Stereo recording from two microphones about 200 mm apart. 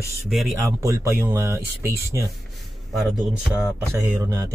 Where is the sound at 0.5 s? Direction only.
15° right (ahead or behind).